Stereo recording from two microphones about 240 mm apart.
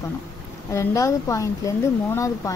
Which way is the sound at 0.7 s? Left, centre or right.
Centre.